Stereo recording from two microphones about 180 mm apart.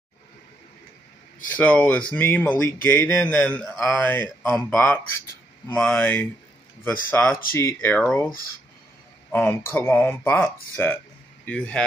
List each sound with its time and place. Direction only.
1.6 s speech: 10° left (ahead or behind)
9.3 s speech: 10° left (ahead or behind)